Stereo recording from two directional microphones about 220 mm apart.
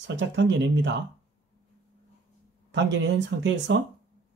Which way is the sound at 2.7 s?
55° right (ahead or behind).